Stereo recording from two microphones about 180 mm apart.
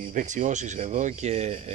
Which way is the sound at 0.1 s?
45° right (ahead or behind).